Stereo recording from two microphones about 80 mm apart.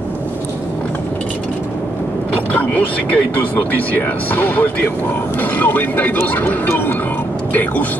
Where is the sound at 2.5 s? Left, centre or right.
Centre.